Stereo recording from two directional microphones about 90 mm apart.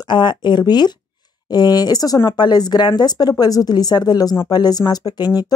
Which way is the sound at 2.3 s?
50° left (ahead or behind).